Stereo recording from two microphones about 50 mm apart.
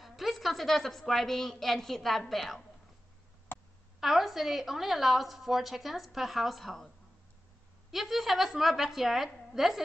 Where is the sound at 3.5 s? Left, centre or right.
Left.